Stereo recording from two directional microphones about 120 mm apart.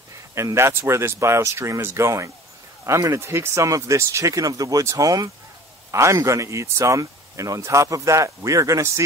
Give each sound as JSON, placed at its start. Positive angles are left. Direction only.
{"t": 0.3, "sound": "speech", "side_deg": -25}